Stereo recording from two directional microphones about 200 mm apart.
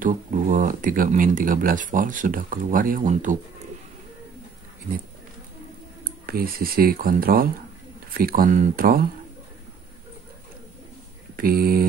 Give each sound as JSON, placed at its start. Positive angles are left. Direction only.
{"t": 0.0, "sound": "speech", "side_deg": -40}
{"t": 6.0, "sound": "speech", "side_deg": -45}
{"t": 11.3, "sound": "a sound", "side_deg": -50}